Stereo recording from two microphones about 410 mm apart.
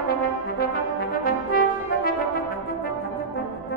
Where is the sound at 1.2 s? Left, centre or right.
Left.